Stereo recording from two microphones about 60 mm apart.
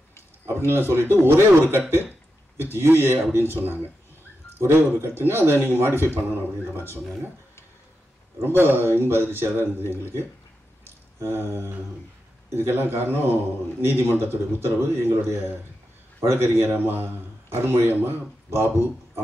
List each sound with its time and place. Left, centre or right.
0.7 s a man's voice: right
8.4 s a man's voice: right
10.8 s a sound: right
12.5 s a man's voice: right